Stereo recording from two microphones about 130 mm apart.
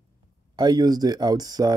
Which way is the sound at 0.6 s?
30° right (ahead or behind).